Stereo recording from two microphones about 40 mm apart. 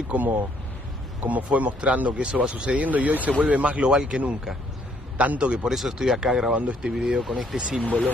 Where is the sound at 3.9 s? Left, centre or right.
Centre.